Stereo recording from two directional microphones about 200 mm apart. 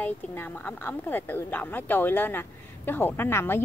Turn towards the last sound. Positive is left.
turn(degrees=10)  # may be behind; listen again after turning